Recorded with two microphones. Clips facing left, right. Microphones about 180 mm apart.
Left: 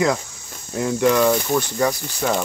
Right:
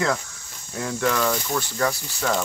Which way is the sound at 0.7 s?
20° left (ahead or behind).